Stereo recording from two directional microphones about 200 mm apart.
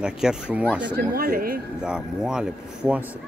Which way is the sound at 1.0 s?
45° right (ahead or behind).